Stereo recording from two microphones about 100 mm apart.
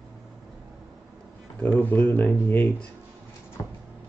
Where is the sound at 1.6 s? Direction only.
15° left (ahead or behind).